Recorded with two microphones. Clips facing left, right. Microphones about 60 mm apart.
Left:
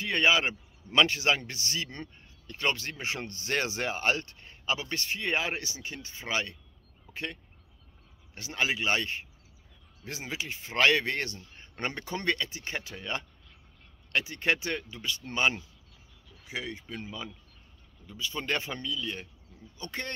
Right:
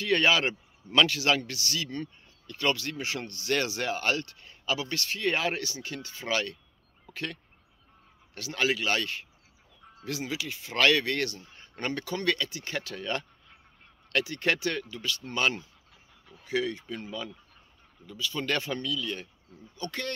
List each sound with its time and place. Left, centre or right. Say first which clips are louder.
0.0 s a man's voice: right 1 dB; centre
7.1 s a sound: right 1 dB; centre
8.4 s speech: right 2 dB; left